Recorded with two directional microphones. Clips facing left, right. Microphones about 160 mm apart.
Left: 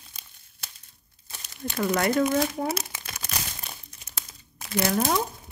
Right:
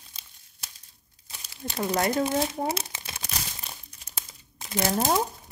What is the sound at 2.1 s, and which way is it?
Speech, 30° right (ahead or behind).